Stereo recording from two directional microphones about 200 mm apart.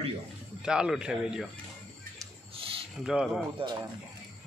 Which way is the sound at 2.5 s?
25° right (ahead or behind).